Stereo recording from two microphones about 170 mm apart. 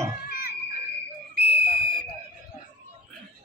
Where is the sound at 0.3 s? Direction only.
60° left (ahead or behind).